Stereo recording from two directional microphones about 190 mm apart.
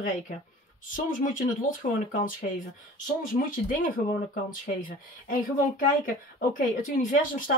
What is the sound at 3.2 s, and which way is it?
Speech, 45° left (ahead or behind).